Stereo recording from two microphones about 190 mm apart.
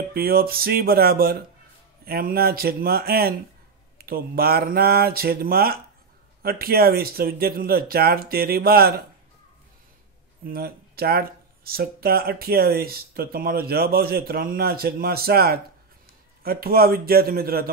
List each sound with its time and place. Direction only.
0.1 s speech: 55° right (ahead or behind)
10.4 s speech: 50° right (ahead or behind)